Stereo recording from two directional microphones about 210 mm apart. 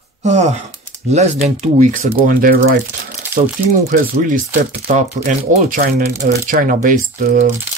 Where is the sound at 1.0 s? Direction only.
35° right (ahead or behind).